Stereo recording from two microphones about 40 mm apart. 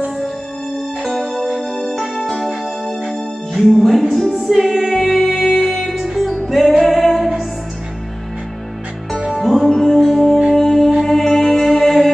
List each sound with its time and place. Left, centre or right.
1.6 s music: centre
3.6 s speech: centre
4.1 s music: centre
9.3 s music: centre